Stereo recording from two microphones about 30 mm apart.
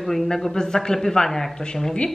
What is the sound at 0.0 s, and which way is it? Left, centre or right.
Speech, centre.